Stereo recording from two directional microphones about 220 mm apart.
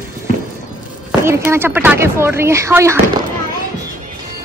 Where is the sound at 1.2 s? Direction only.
10° right (ahead or behind).